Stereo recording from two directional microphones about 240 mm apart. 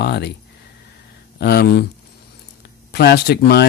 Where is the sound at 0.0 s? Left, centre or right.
Left.